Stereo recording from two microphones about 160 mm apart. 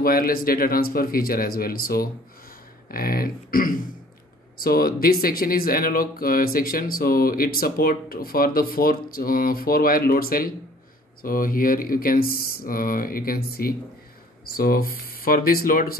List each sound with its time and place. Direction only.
0.0 s speech: 65° left (ahead or behind)